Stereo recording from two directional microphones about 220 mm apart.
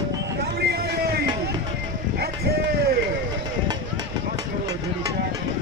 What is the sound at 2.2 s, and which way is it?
Run, 45° right (ahead or behind).